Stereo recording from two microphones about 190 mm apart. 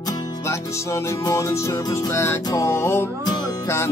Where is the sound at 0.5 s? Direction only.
15° left (ahead or behind).